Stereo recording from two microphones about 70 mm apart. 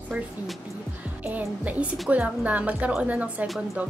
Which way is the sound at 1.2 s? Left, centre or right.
Right.